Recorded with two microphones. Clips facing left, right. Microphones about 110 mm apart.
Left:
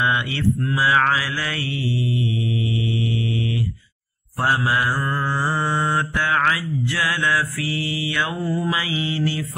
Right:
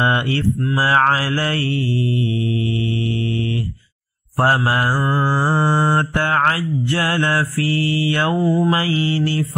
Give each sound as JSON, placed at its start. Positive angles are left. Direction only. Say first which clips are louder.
{"t": 0.0, "sound": "mantra", "louder": "right 3 dB", "side_deg": -40}
{"t": 4.4, "sound": "mantra", "louder": "right 4 dB", "side_deg": -40}
{"t": 5.9, "sound": "mantra", "louder": "right 3 dB", "side_deg": -40}
{"t": 8.4, "sound": "mantra", "louder": "right 7 dB", "side_deg": 0}
{"t": 8.6, "sound": "mantra", "louder": "right 6 dB", "side_deg": -40}